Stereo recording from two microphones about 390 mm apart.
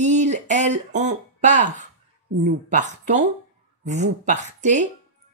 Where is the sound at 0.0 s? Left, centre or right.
Centre.